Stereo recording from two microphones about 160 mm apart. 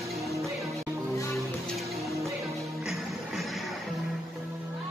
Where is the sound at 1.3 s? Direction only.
Centre (ahead or behind).